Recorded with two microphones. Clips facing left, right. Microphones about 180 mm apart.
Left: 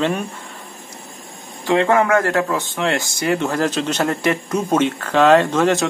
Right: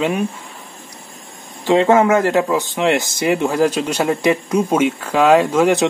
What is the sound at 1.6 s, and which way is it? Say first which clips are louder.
A man's voice: right 3 dB; 20° right (ahead or behind).